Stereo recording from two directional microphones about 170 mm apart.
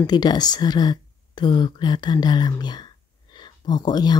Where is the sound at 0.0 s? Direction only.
25° left (ahead or behind).